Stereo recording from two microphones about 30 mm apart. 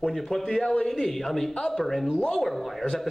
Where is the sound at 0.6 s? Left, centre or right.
Left.